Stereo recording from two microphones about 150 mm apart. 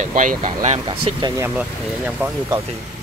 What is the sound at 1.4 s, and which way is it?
Speech, 10° right (ahead or behind).